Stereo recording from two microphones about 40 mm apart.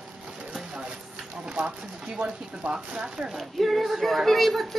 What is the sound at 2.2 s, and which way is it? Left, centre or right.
Speech, right.